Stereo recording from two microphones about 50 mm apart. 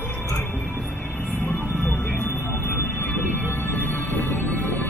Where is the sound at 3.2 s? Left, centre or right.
Left.